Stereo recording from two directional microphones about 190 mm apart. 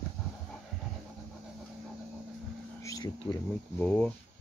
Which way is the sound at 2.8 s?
20° left (ahead or behind).